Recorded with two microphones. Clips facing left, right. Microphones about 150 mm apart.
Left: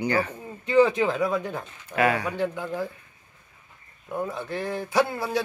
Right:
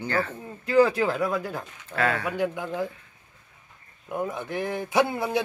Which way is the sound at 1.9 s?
15° left (ahead or behind).